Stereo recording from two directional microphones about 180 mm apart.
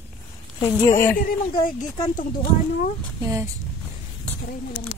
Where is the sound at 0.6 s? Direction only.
15° left (ahead or behind).